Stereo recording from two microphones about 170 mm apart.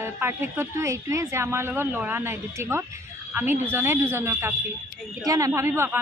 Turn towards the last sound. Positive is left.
turn(degrees=-15)  # may be behind; listen again after turning